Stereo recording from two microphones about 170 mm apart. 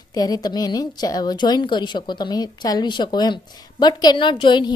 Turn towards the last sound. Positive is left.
turn(degrees=30)  # may be behind; listen again after turning